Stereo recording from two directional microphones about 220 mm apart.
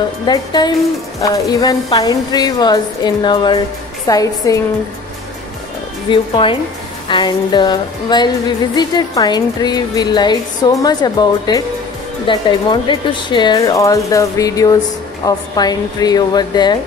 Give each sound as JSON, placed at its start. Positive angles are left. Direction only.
{"t": 0.3, "sound": "music", "side_deg": 20}
{"t": 1.2, "sound": "a woman's voice", "side_deg": 15}
{"t": 6.0, "sound": "music", "side_deg": 20}
{"t": 12.3, "sound": "a woman's voice", "side_deg": 20}